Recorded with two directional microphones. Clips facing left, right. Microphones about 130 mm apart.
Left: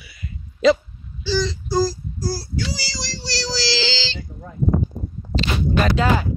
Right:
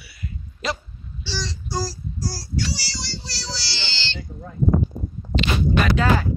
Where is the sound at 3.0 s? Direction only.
90° left.